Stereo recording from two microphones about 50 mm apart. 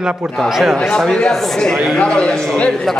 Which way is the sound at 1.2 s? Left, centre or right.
Centre.